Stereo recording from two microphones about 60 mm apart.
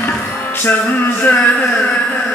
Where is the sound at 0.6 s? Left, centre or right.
Left.